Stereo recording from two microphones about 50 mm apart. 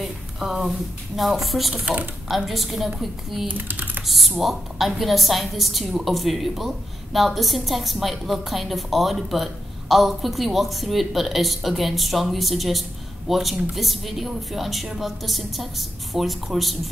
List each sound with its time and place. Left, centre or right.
0.0 s a woman's voice: centre
3.4 s typing: right
4.0 s a woman's voice: centre